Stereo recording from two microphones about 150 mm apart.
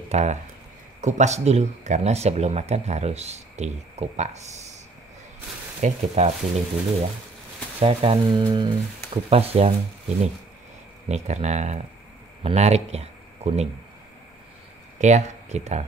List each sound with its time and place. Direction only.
0.1 s speech: 50° right (ahead or behind)
5.8 s speech: 50° right (ahead or behind)
7.8 s speech: 40° right (ahead or behind)
11.1 s speech: 50° right (ahead or behind)
15.0 s speech: 50° right (ahead or behind)